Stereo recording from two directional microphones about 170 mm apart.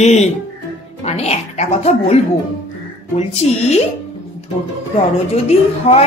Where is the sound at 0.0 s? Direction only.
40° left (ahead or behind).